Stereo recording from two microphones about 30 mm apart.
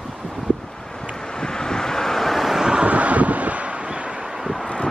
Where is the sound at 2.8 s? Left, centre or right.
Right.